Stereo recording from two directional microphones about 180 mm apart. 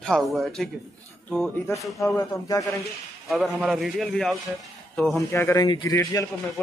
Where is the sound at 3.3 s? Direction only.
Centre (ahead or behind).